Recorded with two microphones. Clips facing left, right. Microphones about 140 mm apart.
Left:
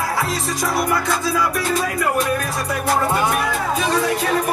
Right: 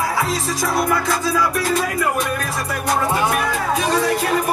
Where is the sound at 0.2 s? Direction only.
Centre (ahead or behind).